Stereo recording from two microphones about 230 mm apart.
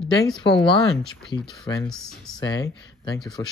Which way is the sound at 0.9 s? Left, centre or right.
Centre.